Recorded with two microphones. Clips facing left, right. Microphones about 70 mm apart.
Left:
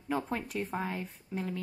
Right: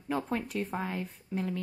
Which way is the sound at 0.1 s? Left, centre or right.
Centre.